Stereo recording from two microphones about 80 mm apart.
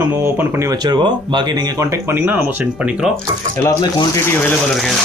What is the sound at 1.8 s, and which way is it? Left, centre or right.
Speech, right.